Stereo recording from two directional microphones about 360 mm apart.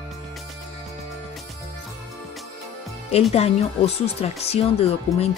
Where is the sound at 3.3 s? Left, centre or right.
Centre.